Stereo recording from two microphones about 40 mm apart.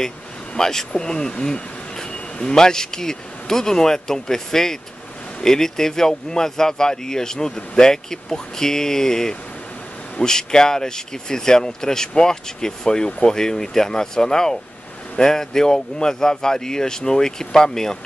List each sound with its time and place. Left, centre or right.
0.6 s speech: centre